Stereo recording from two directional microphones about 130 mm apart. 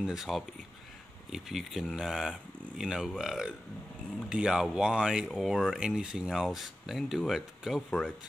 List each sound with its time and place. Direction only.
0.0 s speech: 5° right (ahead or behind)